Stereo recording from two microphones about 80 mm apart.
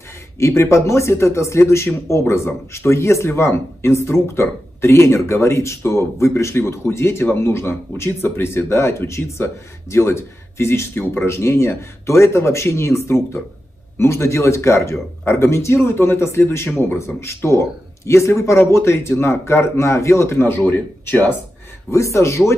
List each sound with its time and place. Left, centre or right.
0.4 s speech: left
21.9 s speech: left